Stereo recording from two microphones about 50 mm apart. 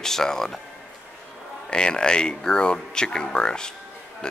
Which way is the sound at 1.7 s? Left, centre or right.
Centre.